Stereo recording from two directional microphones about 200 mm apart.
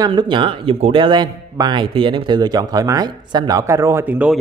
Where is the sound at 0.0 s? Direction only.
20° right (ahead or behind).